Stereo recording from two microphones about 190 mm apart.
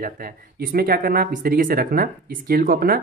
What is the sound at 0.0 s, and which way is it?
Speech, 50° right (ahead or behind).